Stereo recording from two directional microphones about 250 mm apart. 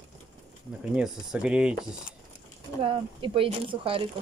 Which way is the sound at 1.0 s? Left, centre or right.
Centre.